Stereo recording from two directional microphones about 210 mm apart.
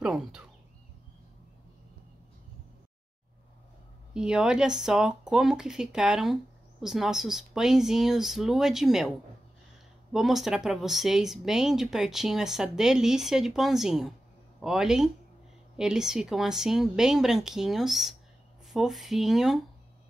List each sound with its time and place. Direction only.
0.0 s speech: 5° right (ahead or behind)
4.1 s speech: 5° right (ahead or behind)
10.1 s speech: centre (ahead or behind)